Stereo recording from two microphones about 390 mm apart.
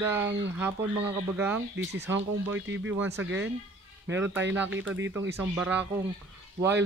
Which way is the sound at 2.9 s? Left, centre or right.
Centre.